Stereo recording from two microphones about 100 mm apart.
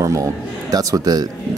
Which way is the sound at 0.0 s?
35° right (ahead or behind).